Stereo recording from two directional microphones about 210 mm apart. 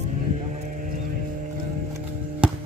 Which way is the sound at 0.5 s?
35° right (ahead or behind).